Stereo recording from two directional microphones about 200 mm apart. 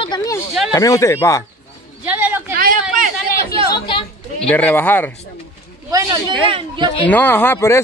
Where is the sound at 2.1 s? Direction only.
10° right (ahead or behind).